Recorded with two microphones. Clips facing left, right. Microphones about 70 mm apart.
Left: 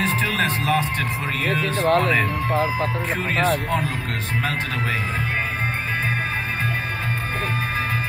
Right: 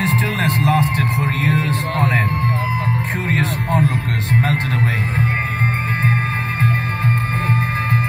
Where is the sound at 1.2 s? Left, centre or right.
Right.